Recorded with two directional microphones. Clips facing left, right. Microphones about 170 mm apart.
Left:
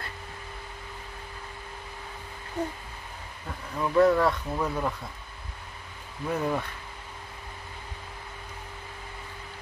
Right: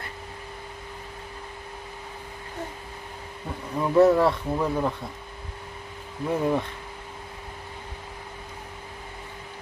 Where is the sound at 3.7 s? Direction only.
20° right (ahead or behind).